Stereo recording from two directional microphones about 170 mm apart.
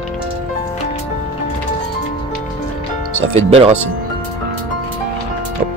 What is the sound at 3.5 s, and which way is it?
Speech, 35° right (ahead or behind).